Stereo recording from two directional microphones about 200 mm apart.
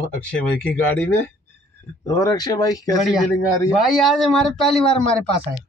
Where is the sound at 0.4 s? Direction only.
10° left (ahead or behind).